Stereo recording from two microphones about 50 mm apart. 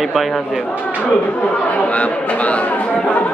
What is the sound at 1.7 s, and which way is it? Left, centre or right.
Speech, left.